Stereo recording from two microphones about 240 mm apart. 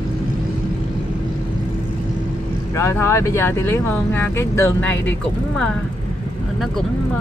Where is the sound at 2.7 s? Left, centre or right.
Centre.